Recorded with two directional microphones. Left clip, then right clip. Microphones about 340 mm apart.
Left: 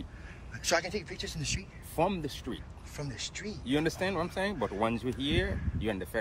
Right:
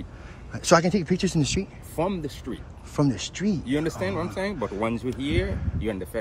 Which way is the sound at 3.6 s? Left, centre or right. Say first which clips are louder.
Even; centre.